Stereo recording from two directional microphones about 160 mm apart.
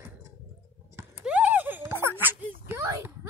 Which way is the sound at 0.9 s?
10° right (ahead or behind).